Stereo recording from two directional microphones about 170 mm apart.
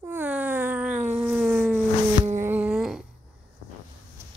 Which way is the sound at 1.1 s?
10° right (ahead or behind).